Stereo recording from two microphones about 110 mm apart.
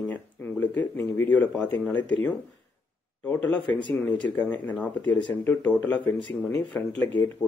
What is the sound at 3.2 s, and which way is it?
Speech, 15° left (ahead or behind).